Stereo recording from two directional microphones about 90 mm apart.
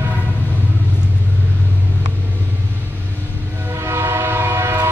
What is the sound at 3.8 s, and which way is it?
Train, 30° right (ahead or behind).